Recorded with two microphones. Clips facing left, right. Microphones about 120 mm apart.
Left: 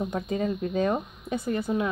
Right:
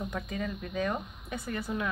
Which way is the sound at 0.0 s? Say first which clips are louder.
Left 7 dB; 30° left (ahead or behind).